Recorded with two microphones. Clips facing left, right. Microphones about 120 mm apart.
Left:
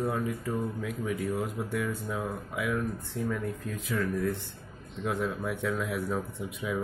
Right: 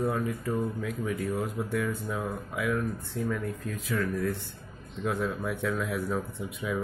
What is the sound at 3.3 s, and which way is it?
Speech, 20° left (ahead or behind).